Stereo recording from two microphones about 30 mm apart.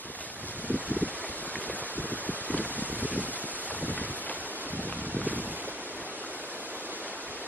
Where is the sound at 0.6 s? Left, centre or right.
Left.